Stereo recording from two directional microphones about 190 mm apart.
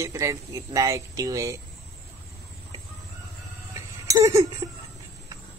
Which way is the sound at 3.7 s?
15° right (ahead or behind).